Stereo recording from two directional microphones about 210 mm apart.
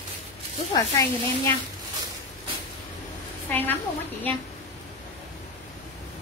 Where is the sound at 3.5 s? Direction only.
10° left (ahead or behind).